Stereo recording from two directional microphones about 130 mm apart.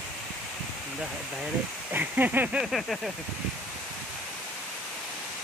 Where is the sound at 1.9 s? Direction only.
15° right (ahead or behind).